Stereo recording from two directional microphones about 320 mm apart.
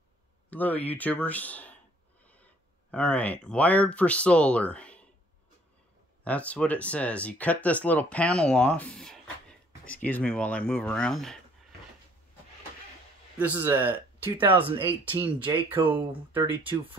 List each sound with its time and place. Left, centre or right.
0.5 s speech: centre
6.2 s speech: centre
13.4 s speech: centre
14.7 s speech: centre